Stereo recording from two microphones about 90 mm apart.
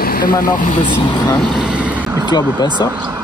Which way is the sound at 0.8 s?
60° left (ahead or behind).